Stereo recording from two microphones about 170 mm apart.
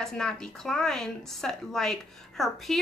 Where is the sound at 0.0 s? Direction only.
5° left (ahead or behind).